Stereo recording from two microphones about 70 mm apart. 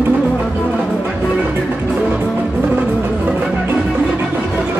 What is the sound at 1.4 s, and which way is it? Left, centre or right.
Music, right.